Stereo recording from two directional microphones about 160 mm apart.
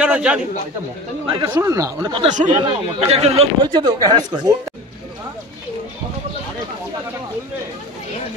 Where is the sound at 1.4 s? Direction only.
15° right (ahead or behind).